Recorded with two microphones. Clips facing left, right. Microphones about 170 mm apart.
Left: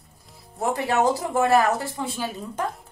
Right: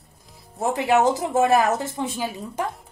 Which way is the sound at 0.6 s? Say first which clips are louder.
Right 2 dB; 20° right (ahead or behind).